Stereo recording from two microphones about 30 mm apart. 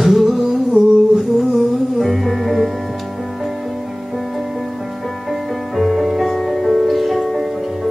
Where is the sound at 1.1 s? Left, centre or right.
Centre.